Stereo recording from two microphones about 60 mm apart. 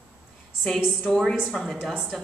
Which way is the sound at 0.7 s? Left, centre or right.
Centre.